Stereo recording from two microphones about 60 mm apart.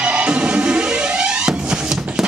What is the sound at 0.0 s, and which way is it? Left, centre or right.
Music, centre.